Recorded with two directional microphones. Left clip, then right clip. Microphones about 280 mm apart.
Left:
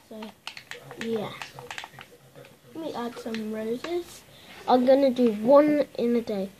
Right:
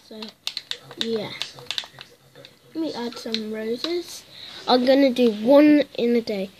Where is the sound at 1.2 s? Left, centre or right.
Right.